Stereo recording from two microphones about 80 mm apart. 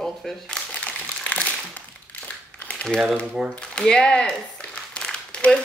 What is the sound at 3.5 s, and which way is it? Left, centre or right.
Speech, centre.